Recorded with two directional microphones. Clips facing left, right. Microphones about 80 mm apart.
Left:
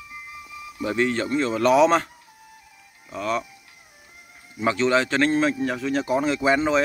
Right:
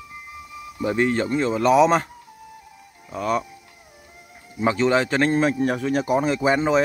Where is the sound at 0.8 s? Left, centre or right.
Right.